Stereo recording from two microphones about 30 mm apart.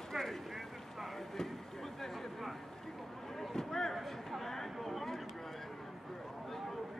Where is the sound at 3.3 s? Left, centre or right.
Centre.